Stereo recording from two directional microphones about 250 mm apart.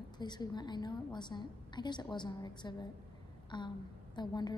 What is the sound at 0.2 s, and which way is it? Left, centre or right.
A woman's voice, centre.